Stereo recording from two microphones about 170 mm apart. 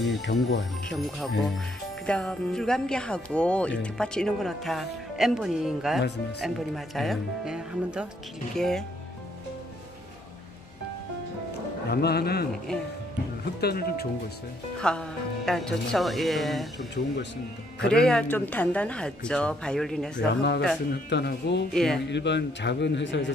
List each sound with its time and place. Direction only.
0.3 s speech: 80° left
0.8 s speech: centre (ahead or behind)
11.9 s speech: 70° left (ahead or behind)
12.7 s speech: 5° left (ahead or behind)
13.6 s speech: 65° left (ahead or behind)
14.8 s speech: 5° left (ahead or behind)
16.7 s a man's voice: 90° left
17.7 s speech: 5° left (ahead or behind)
20.9 s speech: 70° left (ahead or behind)
21.7 s speech: 5° left (ahead or behind)
22.1 s a man's voice: 90° left